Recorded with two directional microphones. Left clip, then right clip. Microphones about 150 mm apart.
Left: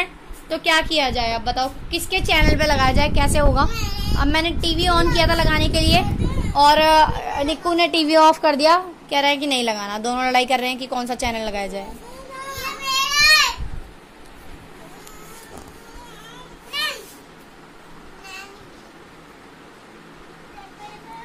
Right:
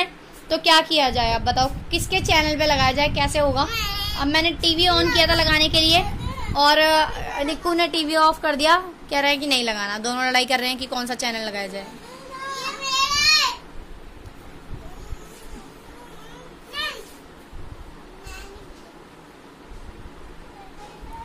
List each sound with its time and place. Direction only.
0.0 s a woman's voice: 10° right (ahead or behind); by 8.5 s 25° left (ahead or behind)
8.5 s a woman's voice: 15° left (ahead or behind)
12.8 s children playing: 5° left (ahead or behind)